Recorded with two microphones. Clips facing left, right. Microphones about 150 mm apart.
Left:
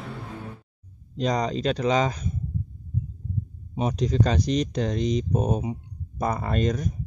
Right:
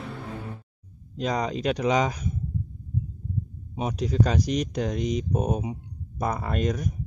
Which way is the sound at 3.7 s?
5° right (ahead or behind).